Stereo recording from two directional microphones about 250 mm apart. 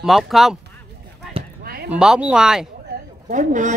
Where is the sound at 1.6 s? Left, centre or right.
Right.